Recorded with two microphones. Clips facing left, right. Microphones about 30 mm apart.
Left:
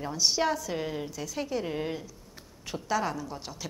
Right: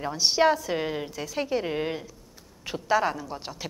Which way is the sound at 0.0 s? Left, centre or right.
Right.